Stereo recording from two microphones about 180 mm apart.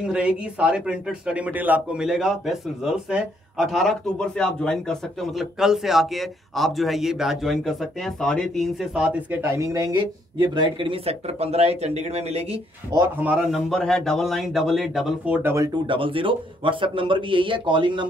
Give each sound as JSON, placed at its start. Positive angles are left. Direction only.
{"t": 0.0, "sound": "speech", "side_deg": -5}
{"t": 12.9, "sound": "speech", "side_deg": -10}
{"t": 15.9, "sound": "speech", "side_deg": -30}